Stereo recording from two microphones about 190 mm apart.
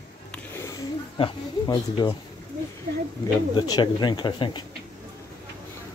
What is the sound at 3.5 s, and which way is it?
Speech, 25° left (ahead or behind).